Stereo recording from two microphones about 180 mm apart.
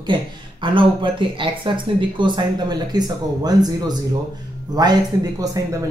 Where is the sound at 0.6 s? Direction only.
30° right (ahead or behind).